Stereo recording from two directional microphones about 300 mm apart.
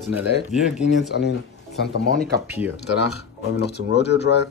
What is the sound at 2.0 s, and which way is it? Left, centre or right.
Speech, right.